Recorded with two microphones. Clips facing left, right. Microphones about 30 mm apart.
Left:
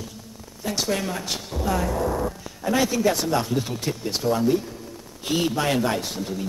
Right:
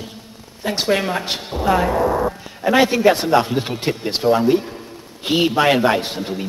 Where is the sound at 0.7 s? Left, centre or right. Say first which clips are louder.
Right 7 dB; right.